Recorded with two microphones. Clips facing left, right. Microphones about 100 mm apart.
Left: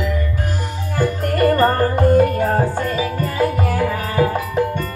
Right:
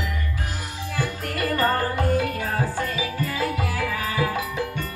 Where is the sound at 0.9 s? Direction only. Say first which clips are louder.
Left 10 dB; 50° left (ahead or behind).